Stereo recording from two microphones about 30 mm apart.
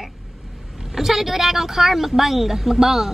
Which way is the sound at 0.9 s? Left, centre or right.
Centre.